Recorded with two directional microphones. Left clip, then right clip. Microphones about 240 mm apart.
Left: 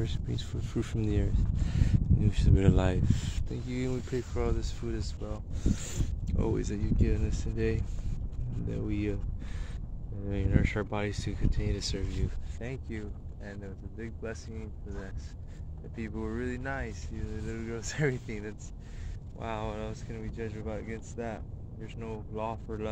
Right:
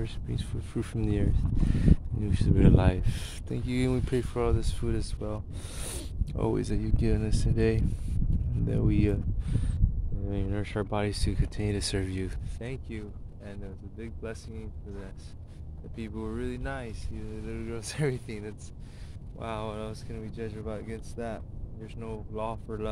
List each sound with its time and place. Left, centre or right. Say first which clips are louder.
0.0 s speech: left 1 dB; centre
3.4 s speech: right 6 dB; right
6.3 s speech: right 3 dB; right
12.6 s speech: right 1 dB; right
13.5 s speech: even; centre
16.0 s speech: even; centre